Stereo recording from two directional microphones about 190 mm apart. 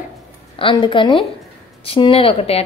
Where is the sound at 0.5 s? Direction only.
25° left (ahead or behind).